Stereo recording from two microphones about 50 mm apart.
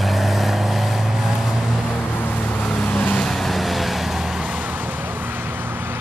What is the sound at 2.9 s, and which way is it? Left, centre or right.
Vehicle, left.